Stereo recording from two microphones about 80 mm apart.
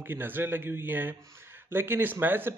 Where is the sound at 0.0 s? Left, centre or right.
Right.